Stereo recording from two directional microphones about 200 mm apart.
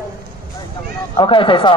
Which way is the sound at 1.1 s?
25° left (ahead or behind).